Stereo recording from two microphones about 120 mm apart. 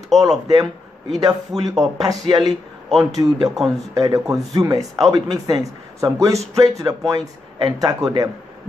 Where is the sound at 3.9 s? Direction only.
25° right (ahead or behind).